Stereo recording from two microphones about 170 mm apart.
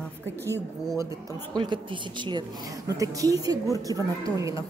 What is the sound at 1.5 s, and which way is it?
A woman's voice, 30° right (ahead or behind).